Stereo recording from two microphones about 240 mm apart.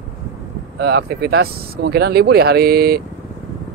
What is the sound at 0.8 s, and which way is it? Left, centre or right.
Speech, right.